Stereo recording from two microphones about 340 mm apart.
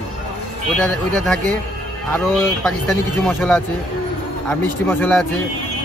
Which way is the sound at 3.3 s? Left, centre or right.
Centre.